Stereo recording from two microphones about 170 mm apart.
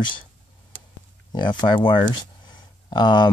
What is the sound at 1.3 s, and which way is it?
Speech, 25° left (ahead or behind).